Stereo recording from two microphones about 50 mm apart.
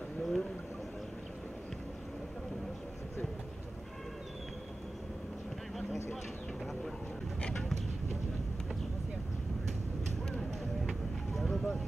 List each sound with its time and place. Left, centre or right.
0.2 s a sound: centre
6.6 s vehicle: centre
10.9 s vehicle: centre